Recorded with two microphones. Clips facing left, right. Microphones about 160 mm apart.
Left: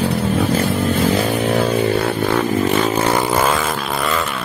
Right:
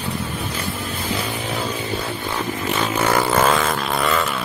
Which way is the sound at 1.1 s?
60° left (ahead or behind).